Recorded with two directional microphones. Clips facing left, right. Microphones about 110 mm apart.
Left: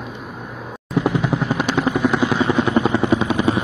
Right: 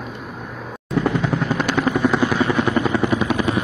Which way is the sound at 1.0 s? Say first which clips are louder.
Left 1 dB; 15° left (ahead or behind).